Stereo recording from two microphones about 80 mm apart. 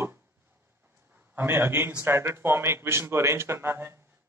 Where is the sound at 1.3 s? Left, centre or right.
Right.